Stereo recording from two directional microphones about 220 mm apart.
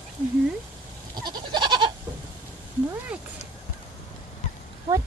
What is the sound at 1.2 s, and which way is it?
Goat, 20° right (ahead or behind).